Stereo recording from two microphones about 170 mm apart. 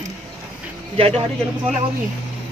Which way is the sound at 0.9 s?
35° right (ahead or behind).